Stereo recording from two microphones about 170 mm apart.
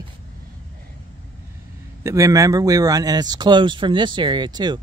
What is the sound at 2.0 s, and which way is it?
Speech, 20° right (ahead or behind).